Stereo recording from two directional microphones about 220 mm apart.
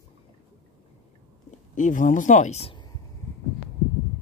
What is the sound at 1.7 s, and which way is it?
Speech, 35° left (ahead or behind).